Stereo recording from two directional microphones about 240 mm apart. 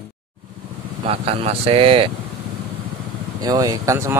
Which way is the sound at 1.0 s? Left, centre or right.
Right.